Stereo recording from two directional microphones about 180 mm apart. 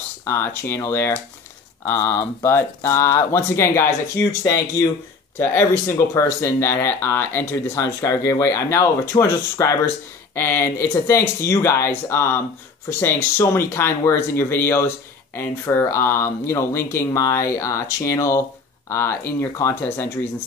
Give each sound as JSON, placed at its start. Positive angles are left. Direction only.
{"t": 0.3, "sound": "speech", "side_deg": 15}